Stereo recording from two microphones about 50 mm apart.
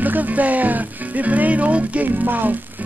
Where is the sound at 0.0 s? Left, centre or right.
Right.